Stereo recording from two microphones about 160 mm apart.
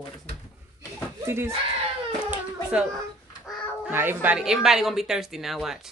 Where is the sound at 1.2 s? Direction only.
15° right (ahead or behind).